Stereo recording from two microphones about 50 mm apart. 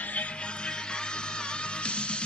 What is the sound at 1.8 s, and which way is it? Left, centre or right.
Music, left.